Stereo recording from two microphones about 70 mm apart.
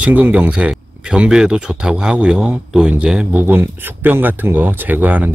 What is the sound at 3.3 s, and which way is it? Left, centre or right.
Speech, right.